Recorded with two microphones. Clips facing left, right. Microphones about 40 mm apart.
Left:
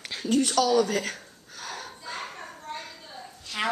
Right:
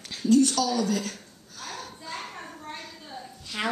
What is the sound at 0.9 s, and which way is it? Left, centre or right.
Speech, left.